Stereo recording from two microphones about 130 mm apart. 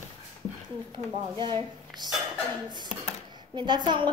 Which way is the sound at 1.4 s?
35° right (ahead or behind).